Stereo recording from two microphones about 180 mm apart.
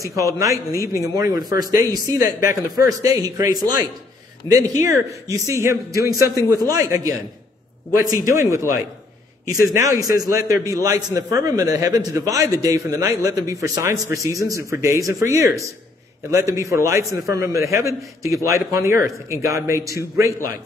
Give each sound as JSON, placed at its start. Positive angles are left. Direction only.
{"t": 0.0, "sound": "a man's voice", "side_deg": -20}
{"t": 4.4, "sound": "speech", "side_deg": 20}
{"t": 4.8, "sound": "a man's voice", "side_deg": -15}